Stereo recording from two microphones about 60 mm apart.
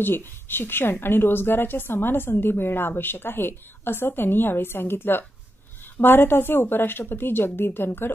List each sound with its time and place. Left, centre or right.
0.0 s a woman's voice: left